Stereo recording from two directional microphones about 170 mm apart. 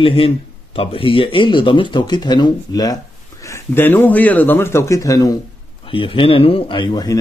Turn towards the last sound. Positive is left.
turn(degrees=25)  # may be behind; listen again after turning